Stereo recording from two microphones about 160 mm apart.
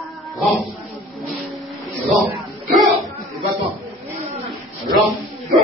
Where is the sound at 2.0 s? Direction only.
Centre (ahead or behind).